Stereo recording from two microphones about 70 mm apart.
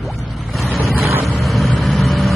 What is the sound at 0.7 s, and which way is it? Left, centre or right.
Vehicle, right.